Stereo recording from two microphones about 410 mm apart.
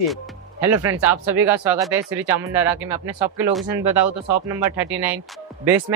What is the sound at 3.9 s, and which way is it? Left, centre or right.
Speech, right.